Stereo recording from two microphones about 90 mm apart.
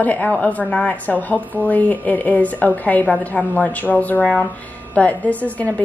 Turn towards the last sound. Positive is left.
turn(degrees=15)  # may be behind; listen again after turning